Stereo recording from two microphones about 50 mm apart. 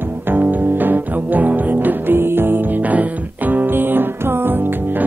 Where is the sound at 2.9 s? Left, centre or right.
Right.